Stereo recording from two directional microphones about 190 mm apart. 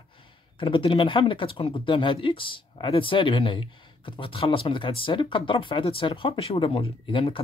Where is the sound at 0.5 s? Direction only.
25° left (ahead or behind).